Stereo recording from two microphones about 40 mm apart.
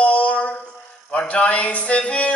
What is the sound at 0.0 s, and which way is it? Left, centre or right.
Music, left.